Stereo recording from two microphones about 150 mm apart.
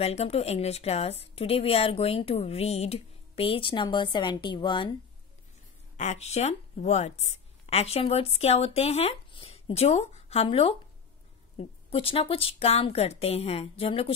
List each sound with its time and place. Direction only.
0.0 s a woman's voice: 45° left (ahead or behind)
5.9 s a woman's voice: 50° left (ahead or behind)